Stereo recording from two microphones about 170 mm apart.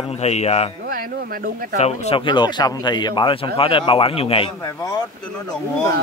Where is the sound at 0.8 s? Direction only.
55° right (ahead or behind).